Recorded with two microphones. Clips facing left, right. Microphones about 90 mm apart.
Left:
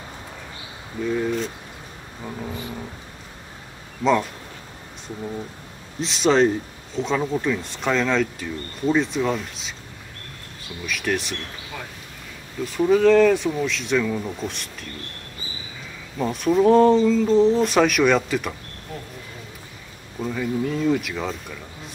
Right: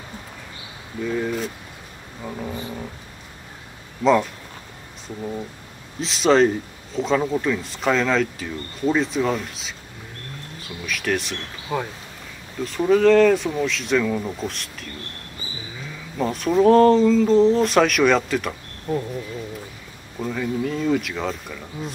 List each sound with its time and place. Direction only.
2.2 s a sound: 5° right (ahead or behind)
4.0 s speech: centre (ahead or behind)
10.9 s speech: centre (ahead or behind)
11.7 s speech: 25° right (ahead or behind)
12.6 s speech: centre (ahead or behind)
16.2 s speech: centre (ahead or behind)
20.2 s speech: centre (ahead or behind)